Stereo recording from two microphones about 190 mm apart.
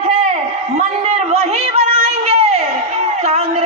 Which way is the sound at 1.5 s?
30° right (ahead or behind).